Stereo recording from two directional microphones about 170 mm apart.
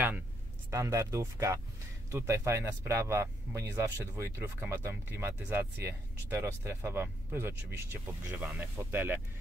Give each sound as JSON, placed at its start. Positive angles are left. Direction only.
{"t": 0.7, "sound": "speech", "side_deg": -15}